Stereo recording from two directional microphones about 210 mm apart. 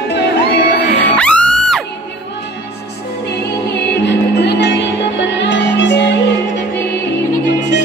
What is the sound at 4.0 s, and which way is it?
Music, 55° left (ahead or behind).